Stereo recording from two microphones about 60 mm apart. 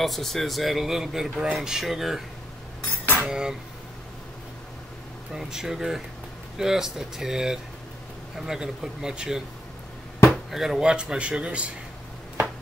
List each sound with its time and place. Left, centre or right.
0.0 s speech: centre
3.3 s speech: centre
5.3 s speech: centre
10.5 s speech: centre
10.8 s speech: centre